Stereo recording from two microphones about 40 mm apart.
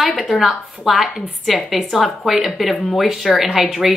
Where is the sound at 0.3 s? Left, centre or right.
Centre.